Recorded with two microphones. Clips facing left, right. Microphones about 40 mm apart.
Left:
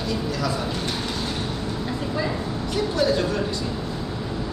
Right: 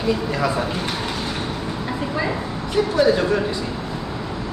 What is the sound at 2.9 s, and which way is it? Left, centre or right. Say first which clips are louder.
Speech: right 5 dB; centre.